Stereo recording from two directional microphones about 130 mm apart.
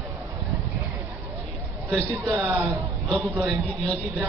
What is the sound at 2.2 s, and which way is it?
Speech, 15° right (ahead or behind).